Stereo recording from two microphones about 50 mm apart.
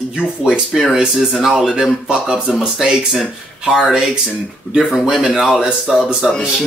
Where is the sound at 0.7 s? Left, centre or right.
Centre.